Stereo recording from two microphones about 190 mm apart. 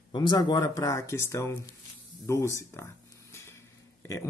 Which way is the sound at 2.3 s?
15° left (ahead or behind).